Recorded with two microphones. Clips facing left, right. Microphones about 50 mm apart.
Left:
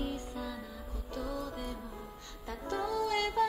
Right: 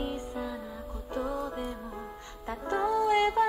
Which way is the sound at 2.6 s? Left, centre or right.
Right.